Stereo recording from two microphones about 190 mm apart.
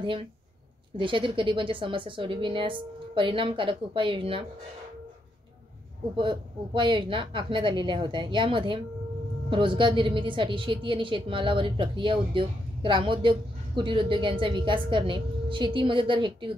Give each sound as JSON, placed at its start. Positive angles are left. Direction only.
{"t": 0.0, "sound": "a woman's voice", "side_deg": -25}
{"t": 6.1, "sound": "a woman's voice", "side_deg": -25}